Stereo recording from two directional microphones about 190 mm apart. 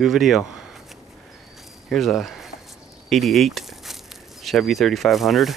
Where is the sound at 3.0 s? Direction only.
Centre (ahead or behind).